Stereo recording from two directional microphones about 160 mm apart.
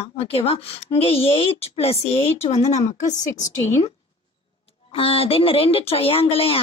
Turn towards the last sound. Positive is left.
turn(degrees=35)  # may be behind; listen again after turning